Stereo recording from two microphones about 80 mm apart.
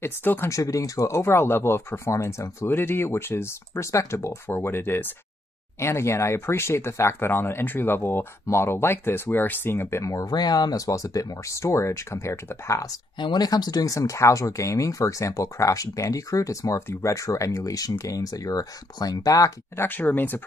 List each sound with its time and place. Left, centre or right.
0.0 s speech: left
0.5 s speech: left
13.2 s speech: left
19.8 s speech: left